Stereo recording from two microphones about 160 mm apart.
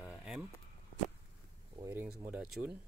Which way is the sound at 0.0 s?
5° right (ahead or behind).